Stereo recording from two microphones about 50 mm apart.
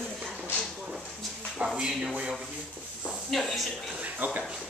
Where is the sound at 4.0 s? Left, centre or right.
Right.